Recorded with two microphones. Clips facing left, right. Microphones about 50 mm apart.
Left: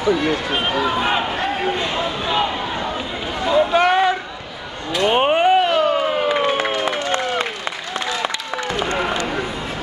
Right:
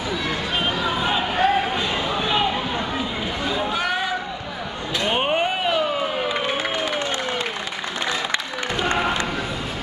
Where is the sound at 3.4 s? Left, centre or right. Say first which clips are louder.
Left 10 dB; left.